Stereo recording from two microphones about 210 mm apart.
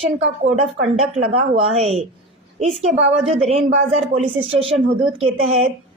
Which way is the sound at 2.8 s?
30° right (ahead or behind).